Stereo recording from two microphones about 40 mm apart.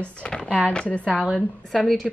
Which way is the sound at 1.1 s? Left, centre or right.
Centre.